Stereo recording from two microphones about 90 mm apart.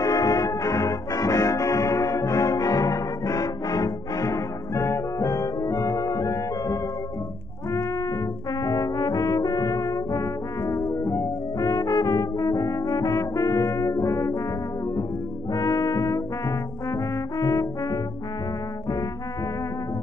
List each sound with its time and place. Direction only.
0.0 s brass instrument: 40° left (ahead or behind)
8.6 s brass instrument: 45° left (ahead or behind)
15.5 s brass instrument: 45° left (ahead or behind)
16.9 s trombone: 40° left (ahead or behind)